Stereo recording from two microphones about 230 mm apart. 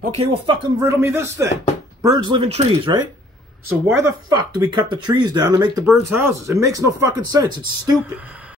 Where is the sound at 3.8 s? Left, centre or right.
Centre.